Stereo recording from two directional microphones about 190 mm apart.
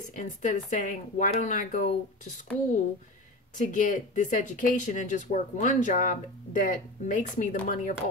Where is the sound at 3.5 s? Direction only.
45° left (ahead or behind).